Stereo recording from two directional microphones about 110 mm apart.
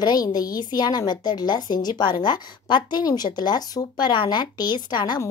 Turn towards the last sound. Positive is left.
turn(degrees=40)  # may be behind; listen again after turning